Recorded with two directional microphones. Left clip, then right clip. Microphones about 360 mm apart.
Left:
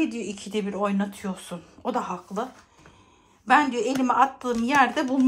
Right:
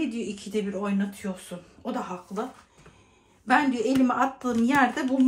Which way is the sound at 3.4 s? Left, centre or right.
Centre.